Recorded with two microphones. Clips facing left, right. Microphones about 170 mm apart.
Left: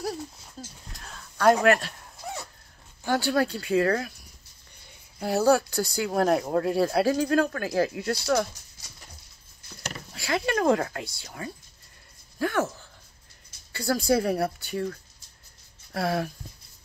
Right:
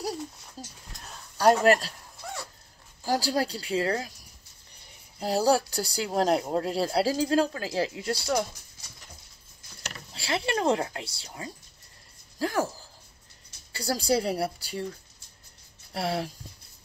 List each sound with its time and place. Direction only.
0.6 s a sound: 35° right (ahead or behind)
1.4 s speech: 35° right (ahead or behind)
3.1 s speech: 35° right (ahead or behind)
5.2 s speech: 30° right (ahead or behind)
10.1 s speech: 30° right (ahead or behind)
13.7 s speech: 30° right (ahead or behind)
15.9 s speech: 25° right (ahead or behind)